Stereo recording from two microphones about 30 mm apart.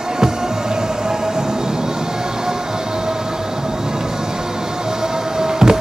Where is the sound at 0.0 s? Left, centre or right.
Centre.